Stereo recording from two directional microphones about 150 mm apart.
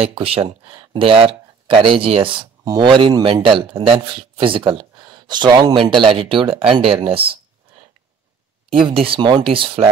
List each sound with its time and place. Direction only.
0.0 s speech: 40° right (ahead or behind)
8.7 s speech: 35° right (ahead or behind)